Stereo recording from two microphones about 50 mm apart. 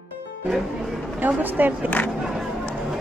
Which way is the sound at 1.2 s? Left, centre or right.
Right.